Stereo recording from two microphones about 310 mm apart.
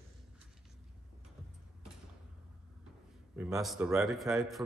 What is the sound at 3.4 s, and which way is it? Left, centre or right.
A man's voice, centre.